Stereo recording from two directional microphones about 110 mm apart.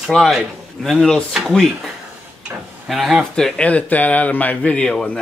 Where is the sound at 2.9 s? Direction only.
Centre (ahead or behind).